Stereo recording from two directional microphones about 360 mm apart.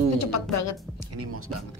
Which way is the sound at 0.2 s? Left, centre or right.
Left.